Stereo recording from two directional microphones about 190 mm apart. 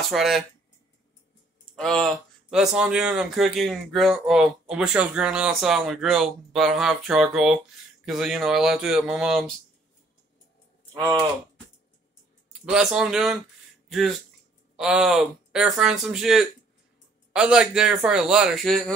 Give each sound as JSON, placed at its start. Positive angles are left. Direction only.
{"t": 0.1, "sound": "speech", "side_deg": 0}
{"t": 1.8, "sound": "speech", "side_deg": 5}
{"t": 11.0, "sound": "speech", "side_deg": -20}
{"t": 12.6, "sound": "speech", "side_deg": -5}